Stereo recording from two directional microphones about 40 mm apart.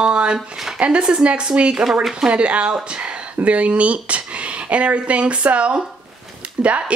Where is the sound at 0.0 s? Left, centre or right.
Right.